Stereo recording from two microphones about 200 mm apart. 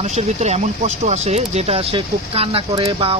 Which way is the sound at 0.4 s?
35° right (ahead or behind).